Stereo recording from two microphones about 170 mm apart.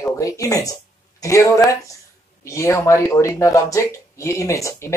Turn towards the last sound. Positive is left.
turn(degrees=15)  # may be behind; listen again after turning